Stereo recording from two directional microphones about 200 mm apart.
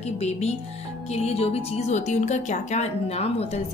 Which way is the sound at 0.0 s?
30° left (ahead or behind).